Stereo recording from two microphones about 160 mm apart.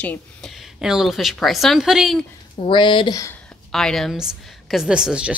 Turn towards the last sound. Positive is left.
turn(degrees=-5)  # may be behind; listen again after turning